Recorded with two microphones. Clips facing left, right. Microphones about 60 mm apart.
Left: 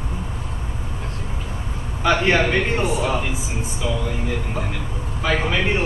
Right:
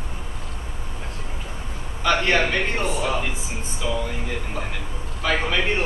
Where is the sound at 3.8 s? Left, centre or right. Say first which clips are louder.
Left 1 dB; centre.